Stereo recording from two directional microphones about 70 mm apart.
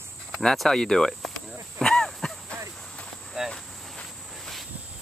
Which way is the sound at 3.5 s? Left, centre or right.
Centre.